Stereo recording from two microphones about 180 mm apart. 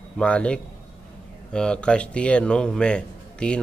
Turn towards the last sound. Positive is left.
turn(degrees=5)  # may be behind; listen again after turning